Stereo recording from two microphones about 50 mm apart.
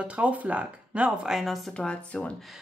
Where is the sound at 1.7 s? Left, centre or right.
Left.